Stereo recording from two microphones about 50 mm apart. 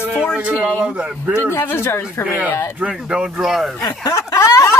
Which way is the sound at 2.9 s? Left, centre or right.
Centre.